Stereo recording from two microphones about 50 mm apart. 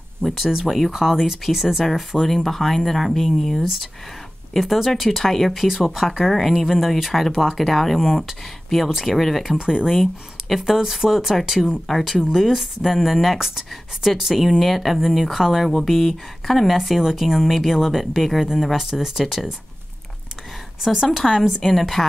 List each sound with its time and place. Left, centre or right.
0.2 s speech: centre
6.5 s speech: centre
9.6 s speech: centre
10.6 s speech: centre
20.8 s speech: centre